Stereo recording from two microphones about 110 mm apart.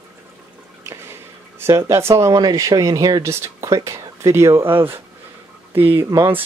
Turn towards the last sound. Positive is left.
turn(degrees=-25)  # may be behind; listen again after turning